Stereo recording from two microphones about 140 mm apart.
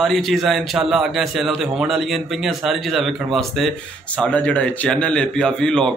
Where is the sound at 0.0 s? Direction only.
Centre (ahead or behind).